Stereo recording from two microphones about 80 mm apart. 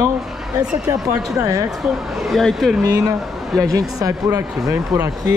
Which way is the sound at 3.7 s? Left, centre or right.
Right.